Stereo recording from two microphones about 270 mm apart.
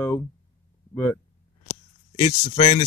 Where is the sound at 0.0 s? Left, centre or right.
Centre.